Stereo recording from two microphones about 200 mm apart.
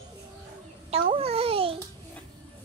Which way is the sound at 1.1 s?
30° right (ahead or behind).